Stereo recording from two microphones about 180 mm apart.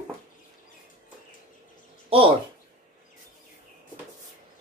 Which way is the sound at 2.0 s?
30° right (ahead or behind).